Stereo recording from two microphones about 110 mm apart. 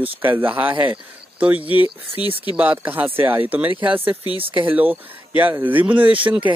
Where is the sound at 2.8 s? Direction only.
15° right (ahead or behind).